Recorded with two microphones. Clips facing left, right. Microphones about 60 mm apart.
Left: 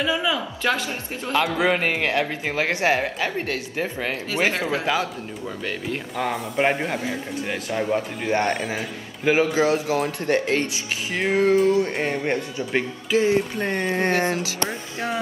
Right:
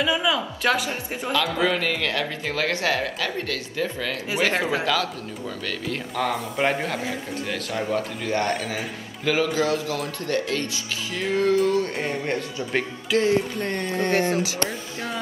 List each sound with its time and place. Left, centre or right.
0.0 s speech: centre
0.6 s speech: centre
1.3 s speech: left
4.6 s speech: right
5.7 s speech: centre
12.7 s speech: centre; by 15.1 s left